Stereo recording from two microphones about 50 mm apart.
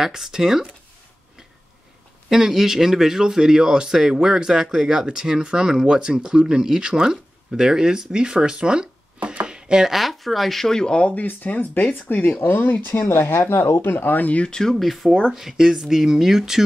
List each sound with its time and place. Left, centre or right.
0.0 s speech: centre
2.2 s speech: centre
9.9 s speech: centre
11.1 s speech: left
14.4 s speech: centre